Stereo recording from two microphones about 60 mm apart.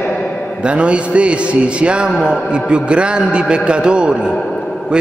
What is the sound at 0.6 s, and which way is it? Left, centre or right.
Mantra, centre.